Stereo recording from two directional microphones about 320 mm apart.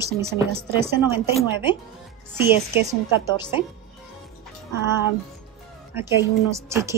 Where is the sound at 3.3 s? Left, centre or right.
Centre.